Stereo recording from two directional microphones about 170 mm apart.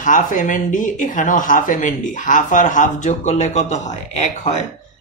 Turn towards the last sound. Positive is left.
turn(degrees=45)  # may be behind; listen again after turning